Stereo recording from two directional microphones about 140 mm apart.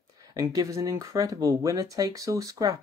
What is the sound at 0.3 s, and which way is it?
Speech, 25° right (ahead or behind).